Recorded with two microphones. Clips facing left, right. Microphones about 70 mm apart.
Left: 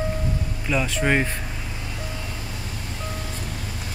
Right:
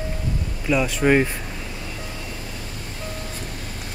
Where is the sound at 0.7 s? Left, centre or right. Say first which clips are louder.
Right 4 dB; centre.